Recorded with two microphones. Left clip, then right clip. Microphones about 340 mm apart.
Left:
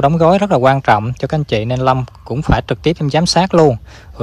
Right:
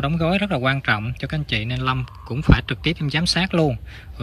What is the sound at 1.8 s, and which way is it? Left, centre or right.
Speech, centre.